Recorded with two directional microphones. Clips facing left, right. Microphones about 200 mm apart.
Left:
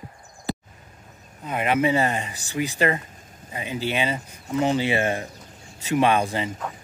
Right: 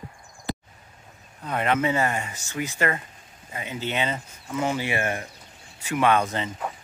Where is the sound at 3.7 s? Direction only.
20° right (ahead or behind).